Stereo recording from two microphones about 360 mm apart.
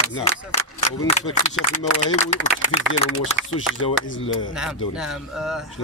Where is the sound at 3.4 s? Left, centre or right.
Right.